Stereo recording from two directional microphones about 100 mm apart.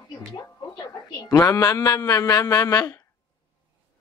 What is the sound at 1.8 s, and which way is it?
Speech, 40° left (ahead or behind).